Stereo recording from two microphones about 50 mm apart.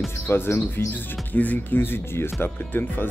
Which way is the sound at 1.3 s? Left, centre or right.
Left.